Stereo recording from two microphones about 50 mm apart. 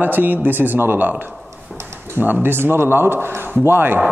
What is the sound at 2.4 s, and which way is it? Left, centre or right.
A man's voice, right.